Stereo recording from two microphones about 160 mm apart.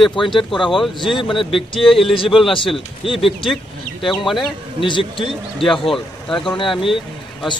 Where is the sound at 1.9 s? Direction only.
Centre (ahead or behind).